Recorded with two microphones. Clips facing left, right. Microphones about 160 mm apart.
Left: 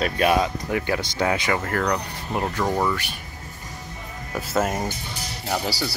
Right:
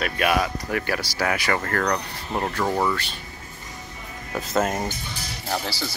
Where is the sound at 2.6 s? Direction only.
5° right (ahead or behind).